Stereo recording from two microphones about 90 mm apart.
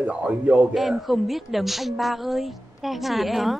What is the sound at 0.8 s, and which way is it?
A woman's voice, centre (ahead or behind).